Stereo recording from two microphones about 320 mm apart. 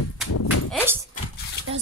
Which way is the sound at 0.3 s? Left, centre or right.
Left.